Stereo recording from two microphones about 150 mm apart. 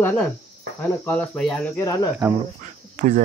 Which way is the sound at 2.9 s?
55° right (ahead or behind).